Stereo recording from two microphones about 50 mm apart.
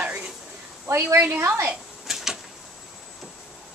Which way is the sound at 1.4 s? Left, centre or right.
Right.